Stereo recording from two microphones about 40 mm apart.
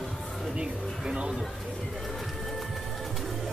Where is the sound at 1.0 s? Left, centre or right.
Right.